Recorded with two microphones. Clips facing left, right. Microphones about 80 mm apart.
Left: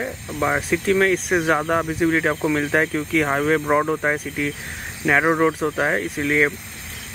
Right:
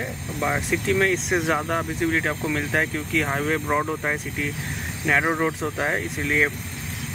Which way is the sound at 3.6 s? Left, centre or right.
Left.